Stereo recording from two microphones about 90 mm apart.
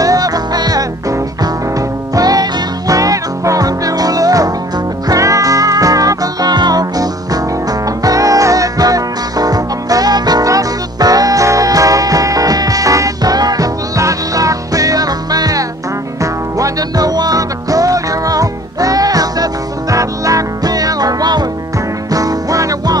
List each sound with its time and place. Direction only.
0.0 s music: 45° right (ahead or behind)
2.1 s music: 45° right (ahead or behind)